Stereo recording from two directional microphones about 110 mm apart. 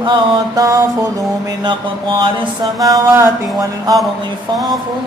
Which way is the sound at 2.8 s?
30° right (ahead or behind).